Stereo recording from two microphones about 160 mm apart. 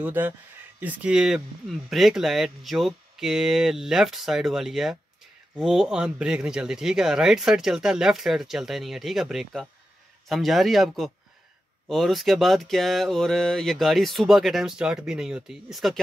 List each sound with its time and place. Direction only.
0.0 s speech: 10° right (ahead or behind)